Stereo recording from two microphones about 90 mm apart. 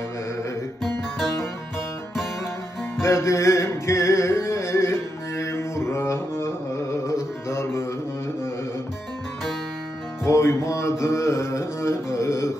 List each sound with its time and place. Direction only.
3.0 s music: 30° left (ahead or behind)
10.2 s music: 30° left (ahead or behind)